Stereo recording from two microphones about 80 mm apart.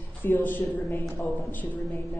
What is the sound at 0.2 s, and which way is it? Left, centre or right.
A woman's voice, left.